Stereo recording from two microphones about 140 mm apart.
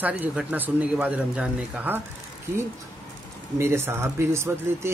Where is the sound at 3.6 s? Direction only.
20° right (ahead or behind).